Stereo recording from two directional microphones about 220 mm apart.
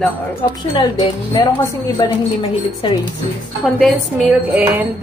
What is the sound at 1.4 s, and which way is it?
A woman's voice, 20° left (ahead or behind).